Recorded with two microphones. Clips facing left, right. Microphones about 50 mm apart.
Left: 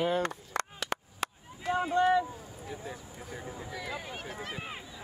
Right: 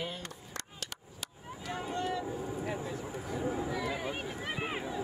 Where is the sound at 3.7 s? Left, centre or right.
Centre.